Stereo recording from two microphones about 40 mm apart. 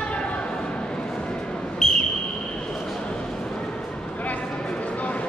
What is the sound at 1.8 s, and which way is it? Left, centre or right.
Whistle, centre.